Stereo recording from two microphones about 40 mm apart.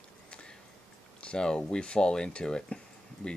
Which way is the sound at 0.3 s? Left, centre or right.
Left.